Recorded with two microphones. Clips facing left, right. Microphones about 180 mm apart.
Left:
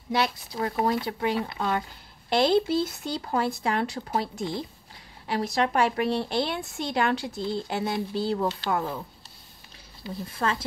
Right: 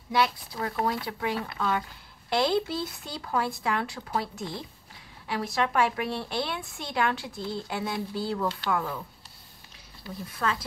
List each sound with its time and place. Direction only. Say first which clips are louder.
0.1 s a woman's voice: even; 25° left (ahead or behind)
10.0 s speech: left 2 dB; 25° left (ahead or behind)